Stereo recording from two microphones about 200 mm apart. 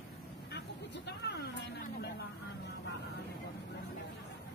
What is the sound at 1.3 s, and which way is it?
Speech, 60° left (ahead or behind).